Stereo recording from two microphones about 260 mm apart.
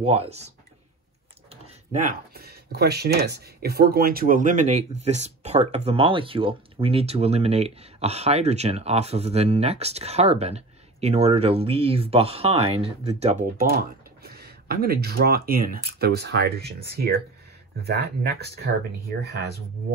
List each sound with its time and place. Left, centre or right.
0.0 s speech: right
1.5 s a sound: right
2.3 s speech: right
13.7 s speech: right